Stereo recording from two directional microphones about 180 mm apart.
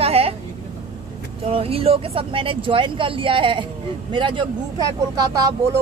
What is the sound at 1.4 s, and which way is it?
Speech, 35° right (ahead or behind).